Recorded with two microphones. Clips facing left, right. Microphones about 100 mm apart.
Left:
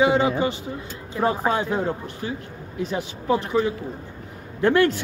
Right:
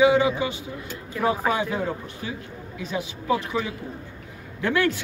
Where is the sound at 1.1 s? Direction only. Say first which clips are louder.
Left 1 dB; 35° left (ahead or behind).